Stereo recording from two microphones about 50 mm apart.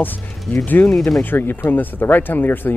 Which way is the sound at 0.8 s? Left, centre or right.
Left.